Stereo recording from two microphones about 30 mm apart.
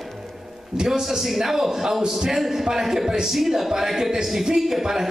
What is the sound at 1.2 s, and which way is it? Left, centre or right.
A woman's voice, centre.